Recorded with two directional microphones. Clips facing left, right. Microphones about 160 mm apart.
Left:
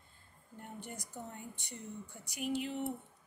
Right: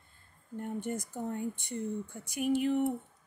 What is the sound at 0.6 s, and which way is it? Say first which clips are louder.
Speech: right 11 dB; 50° right (ahead or behind).